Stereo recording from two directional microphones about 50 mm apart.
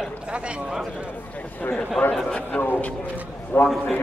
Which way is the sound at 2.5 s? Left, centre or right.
Left.